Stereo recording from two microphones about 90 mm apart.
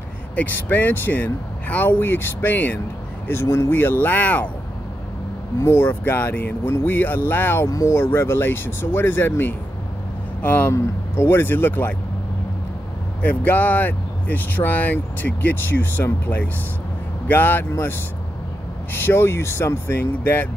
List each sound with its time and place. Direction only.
0.4 s speech: 20° left (ahead or behind)
5.6 s speech: 25° left (ahead or behind)
13.2 s speech: 20° left (ahead or behind)
19.0 s speech: 25° left (ahead or behind)